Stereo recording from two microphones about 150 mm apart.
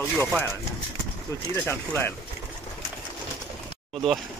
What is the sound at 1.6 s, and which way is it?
Speech, 15° left (ahead or behind).